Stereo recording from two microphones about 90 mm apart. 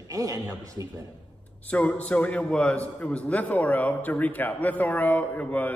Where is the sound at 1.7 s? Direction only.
15° left (ahead or behind).